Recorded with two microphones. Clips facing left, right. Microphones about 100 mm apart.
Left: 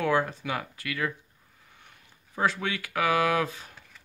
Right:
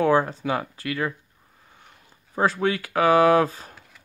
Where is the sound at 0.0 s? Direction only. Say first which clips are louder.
Right 6 dB; 35° right (ahead or behind).